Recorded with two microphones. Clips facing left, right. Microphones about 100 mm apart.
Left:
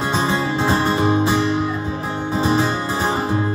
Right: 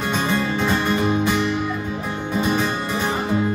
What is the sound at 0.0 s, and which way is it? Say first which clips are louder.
Music: left 2 dB; 25° left (ahead or behind).